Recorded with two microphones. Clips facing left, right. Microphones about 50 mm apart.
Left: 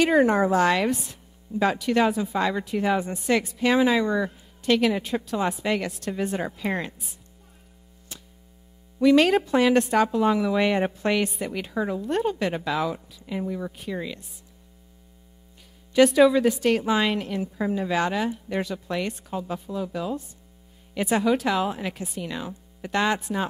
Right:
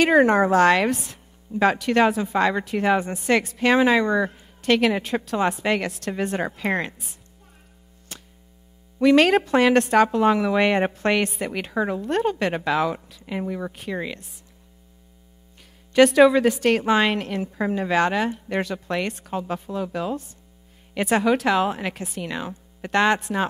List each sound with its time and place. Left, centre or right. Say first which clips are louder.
0.0 s a woman's voice: right 3 dB; right
8.1 s a sound: right 3 dB; right
9.0 s a woman's voice: right 2 dB; right
15.9 s a woman's voice: right 2 dB; right